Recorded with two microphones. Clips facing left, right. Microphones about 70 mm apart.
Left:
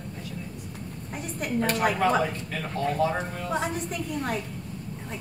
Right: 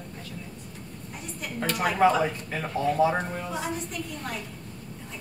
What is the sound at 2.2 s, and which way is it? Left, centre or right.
Speech, centre.